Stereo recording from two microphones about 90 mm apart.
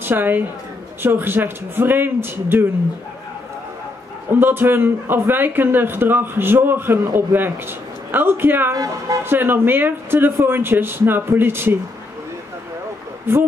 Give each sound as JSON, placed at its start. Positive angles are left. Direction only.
{"t": 0.0, "sound": "a woman's voice", "side_deg": -25}
{"t": 4.3, "sound": "a man's voice", "side_deg": -25}